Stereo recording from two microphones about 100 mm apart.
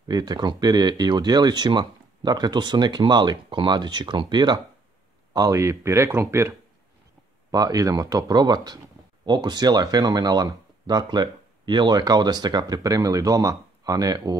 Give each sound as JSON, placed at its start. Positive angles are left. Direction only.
{"t": 0.1, "sound": "speech", "side_deg": -40}
{"t": 5.3, "sound": "speech", "side_deg": -35}
{"t": 7.5, "sound": "speech", "side_deg": -35}